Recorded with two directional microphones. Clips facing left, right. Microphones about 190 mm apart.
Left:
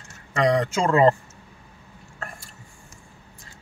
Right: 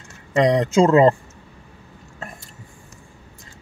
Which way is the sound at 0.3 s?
20° right (ahead or behind).